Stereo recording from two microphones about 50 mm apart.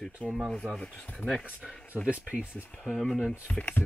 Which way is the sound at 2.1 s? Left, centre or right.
Centre.